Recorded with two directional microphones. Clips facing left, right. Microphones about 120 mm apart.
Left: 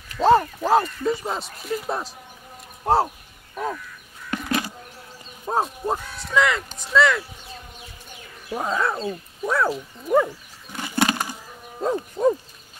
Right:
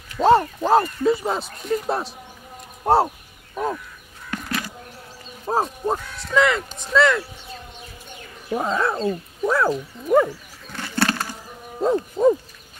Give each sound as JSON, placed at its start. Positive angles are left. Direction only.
{"t": 0.2, "sound": "speech", "side_deg": 0}
{"t": 3.5, "sound": "speech", "side_deg": -15}
{"t": 4.3, "sound": "bird", "side_deg": 20}
{"t": 5.5, "sound": "speech", "side_deg": 0}
{"t": 8.5, "sound": "speech", "side_deg": -5}
{"t": 10.7, "sound": "bird", "side_deg": 15}
{"t": 11.8, "sound": "speech", "side_deg": 0}